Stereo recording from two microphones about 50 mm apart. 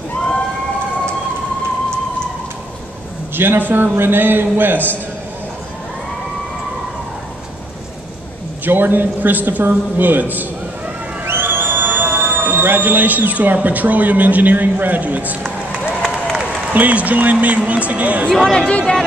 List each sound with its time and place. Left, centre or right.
3.3 s a man's voice: right
8.6 s a man's voice: right
16.7 s a man's voice: right
18.4 s speech: centre